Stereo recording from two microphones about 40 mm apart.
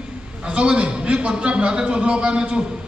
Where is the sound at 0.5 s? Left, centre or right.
Right.